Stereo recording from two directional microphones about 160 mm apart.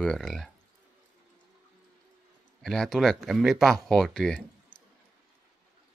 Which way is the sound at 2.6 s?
5° left (ahead or behind).